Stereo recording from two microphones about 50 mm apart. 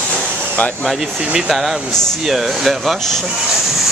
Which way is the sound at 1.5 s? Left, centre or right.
Centre.